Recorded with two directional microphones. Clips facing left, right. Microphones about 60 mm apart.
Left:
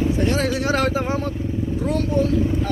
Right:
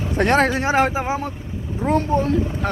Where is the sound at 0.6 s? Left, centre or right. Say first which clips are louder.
Right 2 dB; right.